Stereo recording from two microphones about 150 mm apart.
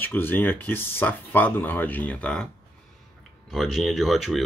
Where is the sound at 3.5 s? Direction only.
Centre (ahead or behind).